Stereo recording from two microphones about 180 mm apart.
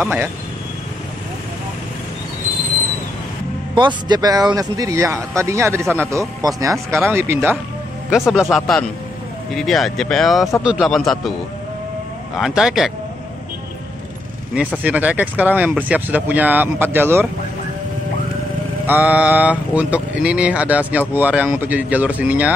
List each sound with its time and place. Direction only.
0.0 s a man's voice: 10° right (ahead or behind)
3.7 s a man's voice: 25° right (ahead or behind); by 11.3 s centre (ahead or behind)
12.4 s speech: centre (ahead or behind)
14.8 s a man's voice: 10° right (ahead or behind)
18.9 s a man's voice: 10° right (ahead or behind)